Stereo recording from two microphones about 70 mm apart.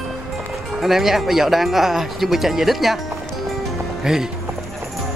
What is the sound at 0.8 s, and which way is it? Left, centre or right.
Speech, centre.